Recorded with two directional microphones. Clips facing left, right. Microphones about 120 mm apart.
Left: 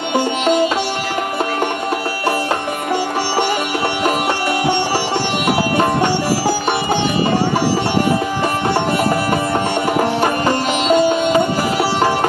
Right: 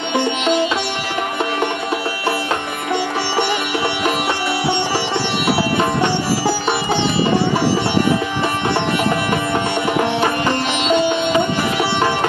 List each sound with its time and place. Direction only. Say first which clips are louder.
0.1 s sitar: left 2 dB; 40° left (ahead or behind)
5.6 s music: left 2 dB; 45° left (ahead or behind)
10.2 s sitar: left 2 dB; 40° left (ahead or behind)